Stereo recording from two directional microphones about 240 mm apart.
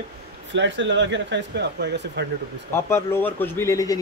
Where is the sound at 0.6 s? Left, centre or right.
Right.